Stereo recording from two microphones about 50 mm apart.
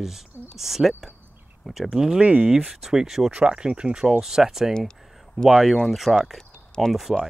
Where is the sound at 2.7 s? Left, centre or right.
Centre.